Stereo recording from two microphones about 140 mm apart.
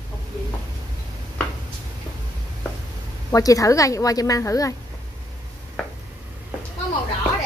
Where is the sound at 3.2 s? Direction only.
25° left (ahead or behind).